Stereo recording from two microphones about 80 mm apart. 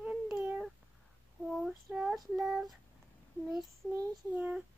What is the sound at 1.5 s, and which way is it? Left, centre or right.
A child's voice, centre.